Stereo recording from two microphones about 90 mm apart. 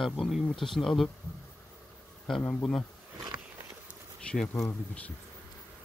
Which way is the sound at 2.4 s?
20° left (ahead or behind).